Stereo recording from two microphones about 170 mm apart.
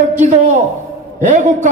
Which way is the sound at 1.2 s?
45° right (ahead or behind).